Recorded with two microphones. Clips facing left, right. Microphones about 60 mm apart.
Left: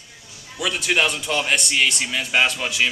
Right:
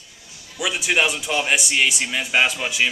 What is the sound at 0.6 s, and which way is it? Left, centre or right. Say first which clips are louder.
Speech: even; centre.